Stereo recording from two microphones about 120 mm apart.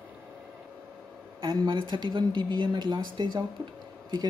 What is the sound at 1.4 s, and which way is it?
Speech, 40° right (ahead or behind).